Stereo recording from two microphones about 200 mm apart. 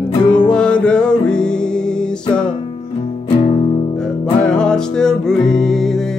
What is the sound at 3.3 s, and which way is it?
Music, 30° left (ahead or behind).